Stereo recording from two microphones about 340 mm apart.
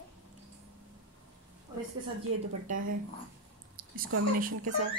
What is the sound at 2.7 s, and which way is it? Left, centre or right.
A woman's voice, right.